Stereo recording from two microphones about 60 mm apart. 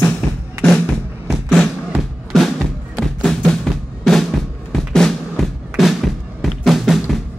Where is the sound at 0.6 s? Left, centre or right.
Centre.